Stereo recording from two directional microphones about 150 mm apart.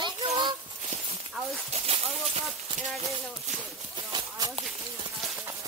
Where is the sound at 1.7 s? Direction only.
45° right (ahead or behind).